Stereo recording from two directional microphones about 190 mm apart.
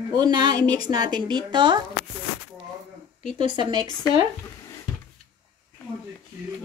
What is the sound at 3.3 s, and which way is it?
Speech, 25° right (ahead or behind).